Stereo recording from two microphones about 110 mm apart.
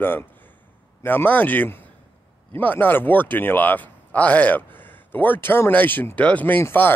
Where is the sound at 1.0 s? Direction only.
15° left (ahead or behind).